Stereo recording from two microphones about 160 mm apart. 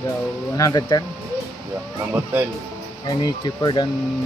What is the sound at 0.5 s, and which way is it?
Speech, 20° left (ahead or behind).